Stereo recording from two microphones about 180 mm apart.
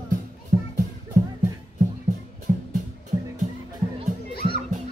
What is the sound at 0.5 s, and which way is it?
Music, 45° right (ahead or behind).